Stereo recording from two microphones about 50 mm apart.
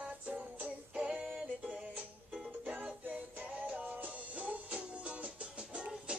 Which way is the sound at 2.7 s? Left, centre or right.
Right.